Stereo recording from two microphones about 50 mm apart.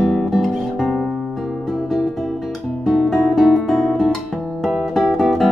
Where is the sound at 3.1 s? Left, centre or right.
Centre.